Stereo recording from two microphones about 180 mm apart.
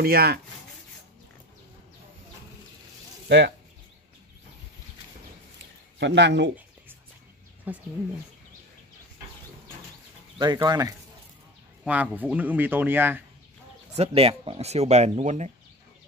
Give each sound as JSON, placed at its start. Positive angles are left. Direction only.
{"t": 0.0, "sound": "speech", "side_deg": -60}
{"t": 3.3, "sound": "speech", "side_deg": -75}
{"t": 5.9, "sound": "speech", "side_deg": -75}
{"t": 7.7, "sound": "speech", "side_deg": -10}
{"t": 10.4, "sound": "speech", "side_deg": -25}
{"t": 11.8, "sound": "speech", "side_deg": -10}
{"t": 13.9, "sound": "speech", "side_deg": -35}